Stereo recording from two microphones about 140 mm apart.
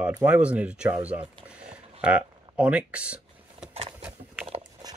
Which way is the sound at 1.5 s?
10° right (ahead or behind).